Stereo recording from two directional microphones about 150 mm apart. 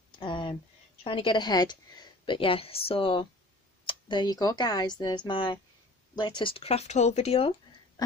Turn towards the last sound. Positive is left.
turn(degrees=40)  # may be behind; listen again after turning